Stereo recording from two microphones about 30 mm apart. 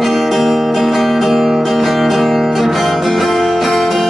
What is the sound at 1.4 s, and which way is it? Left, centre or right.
Music, centre.